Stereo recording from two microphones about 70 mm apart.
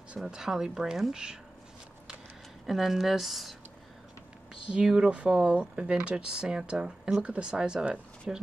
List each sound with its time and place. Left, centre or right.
0.1 s speech: centre
2.6 s speech: centre
4.6 s speech: centre